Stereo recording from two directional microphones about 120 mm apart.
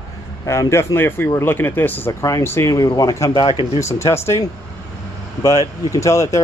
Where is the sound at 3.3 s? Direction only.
50° left (ahead or behind).